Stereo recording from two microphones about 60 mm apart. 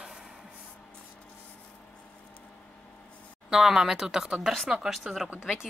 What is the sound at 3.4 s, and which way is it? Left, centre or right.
Speech, centre.